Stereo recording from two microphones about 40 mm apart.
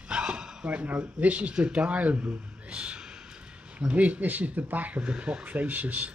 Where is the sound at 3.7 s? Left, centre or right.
Right.